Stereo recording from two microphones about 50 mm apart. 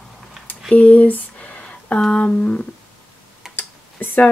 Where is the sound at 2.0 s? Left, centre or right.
Left.